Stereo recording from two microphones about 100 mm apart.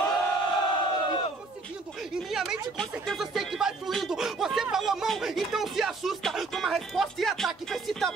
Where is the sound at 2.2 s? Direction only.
5° right (ahead or behind).